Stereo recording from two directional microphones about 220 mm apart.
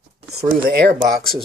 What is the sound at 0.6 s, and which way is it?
Speech, 45° right (ahead or behind).